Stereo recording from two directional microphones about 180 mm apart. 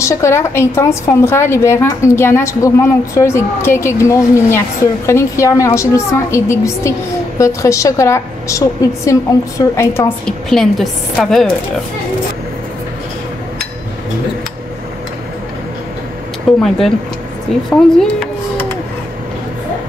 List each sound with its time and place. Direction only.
0.0 s a woman's voice: 15° left (ahead or behind)
16.5 s speech: centre (ahead or behind)